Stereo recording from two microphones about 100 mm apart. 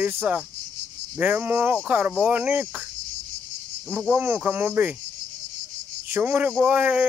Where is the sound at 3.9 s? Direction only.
15° right (ahead or behind).